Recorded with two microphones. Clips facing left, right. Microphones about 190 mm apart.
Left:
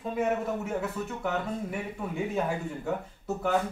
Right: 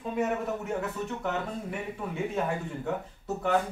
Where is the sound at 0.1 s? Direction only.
Centre (ahead or behind).